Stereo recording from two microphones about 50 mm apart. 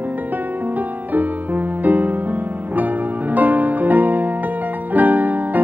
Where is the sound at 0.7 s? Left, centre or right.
Right.